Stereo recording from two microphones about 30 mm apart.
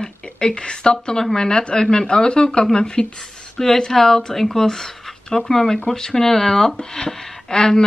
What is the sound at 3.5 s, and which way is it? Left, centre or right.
Speech, centre.